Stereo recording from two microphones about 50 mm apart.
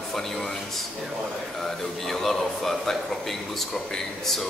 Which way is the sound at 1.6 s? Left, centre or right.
Centre.